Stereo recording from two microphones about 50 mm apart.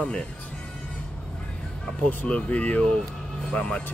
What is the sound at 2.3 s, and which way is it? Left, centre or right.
Speech, left.